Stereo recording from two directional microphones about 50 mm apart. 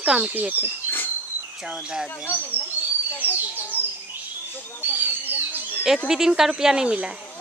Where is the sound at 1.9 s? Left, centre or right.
Centre.